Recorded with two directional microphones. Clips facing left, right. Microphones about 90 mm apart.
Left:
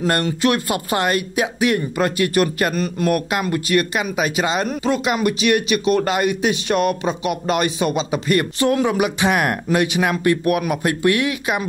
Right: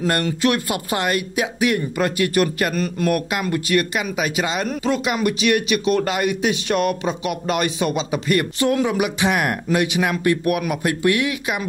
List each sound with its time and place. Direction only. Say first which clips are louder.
0.0 s a man's voice: left 1 dB; 35° left (ahead or behind)
2.7 s a man's voice: left 1 dB; 20° left (ahead or behind); by 11.6 s 40° left (ahead or behind)